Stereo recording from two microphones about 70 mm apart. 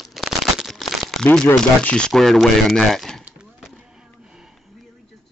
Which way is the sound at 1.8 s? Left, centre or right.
Centre.